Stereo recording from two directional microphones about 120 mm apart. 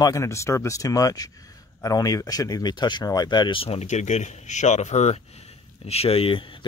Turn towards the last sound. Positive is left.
turn(degrees=45)  # may be behind; listen again after turning